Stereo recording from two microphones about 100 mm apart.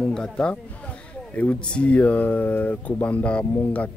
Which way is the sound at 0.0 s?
5° left (ahead or behind).